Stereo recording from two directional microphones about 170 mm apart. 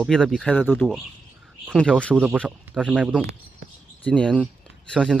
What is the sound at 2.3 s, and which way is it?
Speech, centre (ahead or behind).